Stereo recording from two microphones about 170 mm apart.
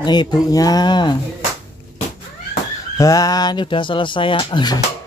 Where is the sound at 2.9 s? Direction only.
20° left (ahead or behind).